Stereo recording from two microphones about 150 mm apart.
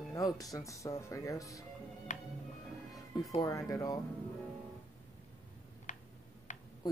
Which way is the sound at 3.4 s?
20° left (ahead or behind).